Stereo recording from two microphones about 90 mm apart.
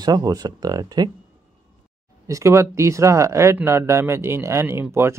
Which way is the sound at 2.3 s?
30° right (ahead or behind).